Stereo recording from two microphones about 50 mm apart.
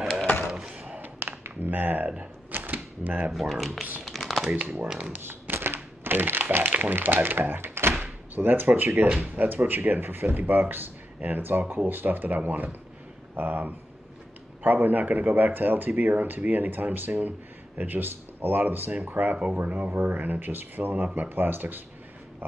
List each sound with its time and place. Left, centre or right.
0.5 s chop: centre
0.8 s tap: right
1.4 s a sound: right
3.3 s speech: centre
4.0 s crumpling: centre
4.9 s speech: right
5.2 s speech: right
8.0 s speech: right
19.3 s speech: right